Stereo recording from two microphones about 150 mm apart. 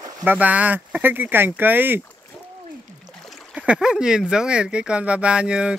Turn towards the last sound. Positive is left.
turn(degrees=-5)  # may be behind; listen again after turning